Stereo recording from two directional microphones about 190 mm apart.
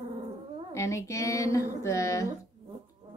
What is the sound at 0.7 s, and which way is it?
A woman's voice, 15° left (ahead or behind).